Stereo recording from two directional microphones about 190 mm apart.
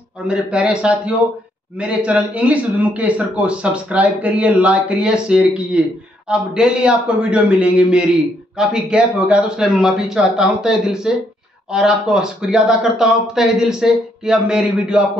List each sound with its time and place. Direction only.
0.3 s speech: 5° right (ahead or behind)